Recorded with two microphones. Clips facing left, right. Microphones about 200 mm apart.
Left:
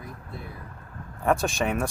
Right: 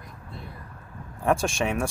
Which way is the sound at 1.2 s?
Centre (ahead or behind).